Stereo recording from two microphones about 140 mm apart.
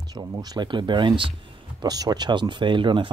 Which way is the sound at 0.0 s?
30° right (ahead or behind).